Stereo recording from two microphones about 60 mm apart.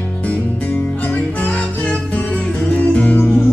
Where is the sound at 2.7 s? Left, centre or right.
Left.